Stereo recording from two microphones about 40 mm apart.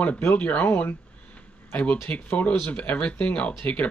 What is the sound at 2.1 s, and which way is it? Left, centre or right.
Speech, left.